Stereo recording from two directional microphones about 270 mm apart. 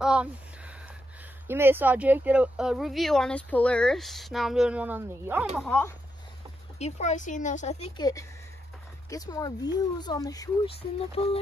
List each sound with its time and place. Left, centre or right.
0.0 s a sound: centre
1.5 s speech: centre
5.7 s speech: centre
6.8 s speech: left
8.0 s speech: centre